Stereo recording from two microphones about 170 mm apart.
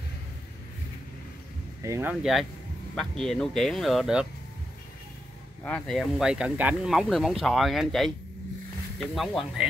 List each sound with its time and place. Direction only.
1.8 s speech: 15° right (ahead or behind)
2.9 s speech: centre (ahead or behind)
5.6 s speech: 5° left (ahead or behind)